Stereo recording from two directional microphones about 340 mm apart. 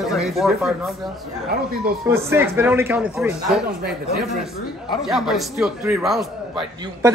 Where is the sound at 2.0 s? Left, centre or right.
Centre.